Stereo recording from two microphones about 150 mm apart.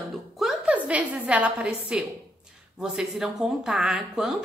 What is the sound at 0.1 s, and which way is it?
A woman's voice, 5° right (ahead or behind).